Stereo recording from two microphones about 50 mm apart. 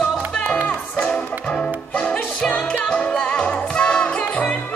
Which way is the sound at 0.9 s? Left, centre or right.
Centre.